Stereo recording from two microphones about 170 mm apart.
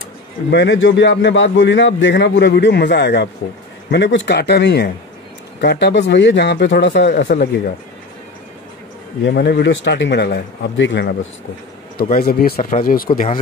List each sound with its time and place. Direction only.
0.5 s a man's voice: 90° left
9.2 s a man's voice: 80° left
12.0 s speech: 65° left (ahead or behind)